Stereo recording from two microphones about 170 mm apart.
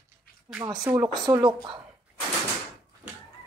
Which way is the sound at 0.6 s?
25° right (ahead or behind).